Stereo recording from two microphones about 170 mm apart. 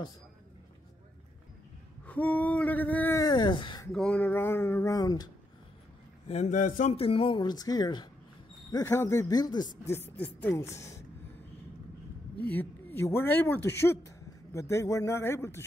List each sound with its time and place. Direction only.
2.0 s speech: 10° left (ahead or behind)
3.3 s speech: 25° left (ahead or behind)
3.9 s speech: 5° left (ahead or behind); by 5.3 s 20° left (ahead or behind)
6.2 s a man's voice: 40° left (ahead or behind)
7.0 s speech: 35° left (ahead or behind)
9.9 s speech: 10° left (ahead or behind)
12.4 s speech: 10° left (ahead or behind)